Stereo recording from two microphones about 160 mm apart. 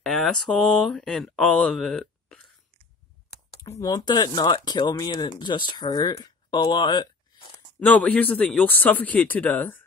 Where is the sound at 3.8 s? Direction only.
25° left (ahead or behind).